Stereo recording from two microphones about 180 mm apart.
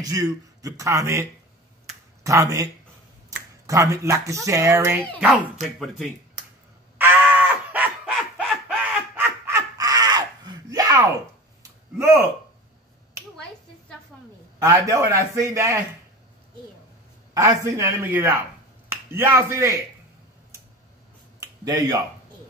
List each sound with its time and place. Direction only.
0.0 s a man's voice: 20° right (ahead or behind)
2.2 s a man's voice: 20° right (ahead or behind)
7.0 s a sound: 10° right (ahead or behind)
12.0 s a man's voice: 15° right (ahead or behind)
14.6 s a man's voice: 15° right (ahead or behind)
17.3 s a man's voice: 15° right (ahead or behind)